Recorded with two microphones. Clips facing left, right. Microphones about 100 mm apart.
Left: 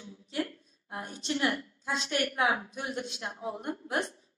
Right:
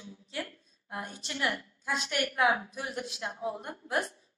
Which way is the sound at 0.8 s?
20° left (ahead or behind).